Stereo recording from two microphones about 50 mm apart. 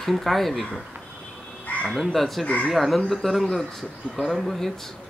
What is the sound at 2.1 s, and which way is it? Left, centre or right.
Speech, centre.